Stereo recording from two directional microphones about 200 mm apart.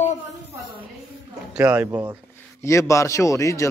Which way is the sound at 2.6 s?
15° left (ahead or behind).